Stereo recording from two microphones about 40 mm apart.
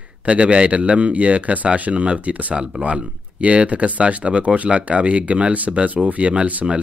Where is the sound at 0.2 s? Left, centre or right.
Right.